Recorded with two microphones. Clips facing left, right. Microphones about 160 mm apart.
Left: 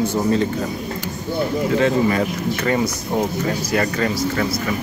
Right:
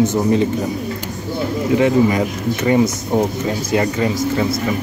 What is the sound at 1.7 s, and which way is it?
Speech, 15° right (ahead or behind).